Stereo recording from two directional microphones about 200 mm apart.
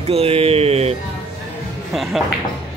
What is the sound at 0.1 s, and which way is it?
Speech, 30° right (ahead or behind).